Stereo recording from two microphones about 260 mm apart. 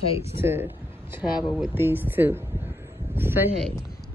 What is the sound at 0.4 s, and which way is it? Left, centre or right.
Speech, centre.